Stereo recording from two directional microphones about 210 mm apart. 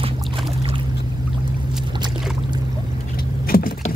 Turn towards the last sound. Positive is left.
turn(degrees=45)  # may be behind; listen again after turning